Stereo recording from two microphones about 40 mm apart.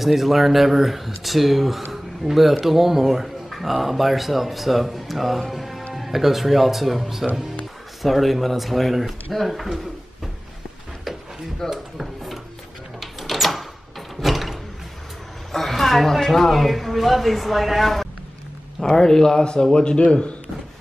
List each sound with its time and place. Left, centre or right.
0.0 s speech: centre
1.9 s a sound: centre
2.6 s speech: centre
5.5 s music: centre
5.9 s speech: centre
11.7 s drawer open or close: centre
13.0 s a sound: centre
15.5 s speech: centre
18.8 s a man's voice: centre